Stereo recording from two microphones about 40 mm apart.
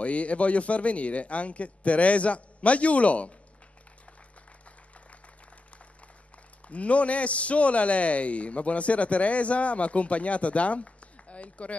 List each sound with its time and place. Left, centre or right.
0.0 s a man's voice: left
6.7 s a man's voice: left